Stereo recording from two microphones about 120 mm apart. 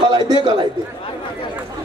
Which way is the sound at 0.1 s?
35° right (ahead or behind).